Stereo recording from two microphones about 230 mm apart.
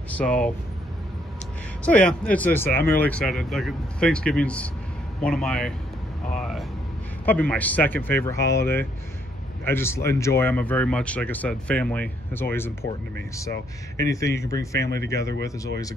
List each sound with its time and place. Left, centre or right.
0.1 s speech: centre
1.9 s speech: centre
13.5 s speech: left
14.1 s speech: centre